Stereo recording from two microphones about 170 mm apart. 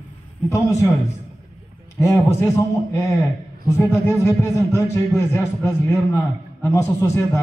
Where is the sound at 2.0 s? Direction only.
20° left (ahead or behind).